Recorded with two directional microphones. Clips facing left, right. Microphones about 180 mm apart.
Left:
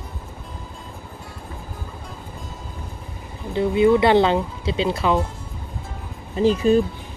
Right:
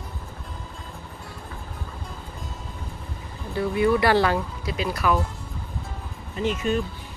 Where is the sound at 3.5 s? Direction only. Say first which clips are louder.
Left 5 dB; 20° left (ahead or behind).